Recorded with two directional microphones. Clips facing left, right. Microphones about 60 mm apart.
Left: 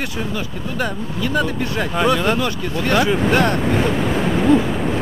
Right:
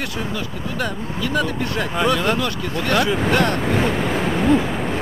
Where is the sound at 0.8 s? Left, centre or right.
Centre.